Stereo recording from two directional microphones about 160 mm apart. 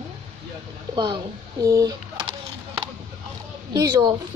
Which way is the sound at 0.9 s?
25° right (ahead or behind).